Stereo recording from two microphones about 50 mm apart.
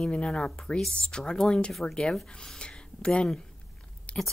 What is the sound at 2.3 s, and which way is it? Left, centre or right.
Speech, centre.